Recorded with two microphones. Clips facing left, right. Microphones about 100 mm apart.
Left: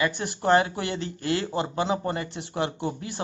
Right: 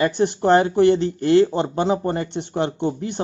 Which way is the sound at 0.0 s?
30° right (ahead or behind).